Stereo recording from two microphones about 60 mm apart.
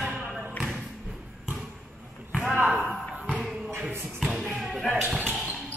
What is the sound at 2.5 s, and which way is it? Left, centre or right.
Slam, right.